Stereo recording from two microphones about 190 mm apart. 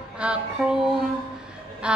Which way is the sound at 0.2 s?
5° right (ahead or behind).